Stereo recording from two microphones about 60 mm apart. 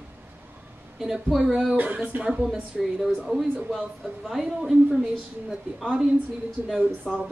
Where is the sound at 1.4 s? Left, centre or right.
Centre.